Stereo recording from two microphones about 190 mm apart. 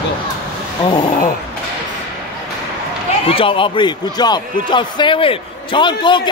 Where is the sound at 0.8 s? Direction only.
25° left (ahead or behind).